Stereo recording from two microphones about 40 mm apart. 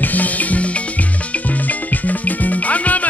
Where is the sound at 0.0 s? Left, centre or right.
Left.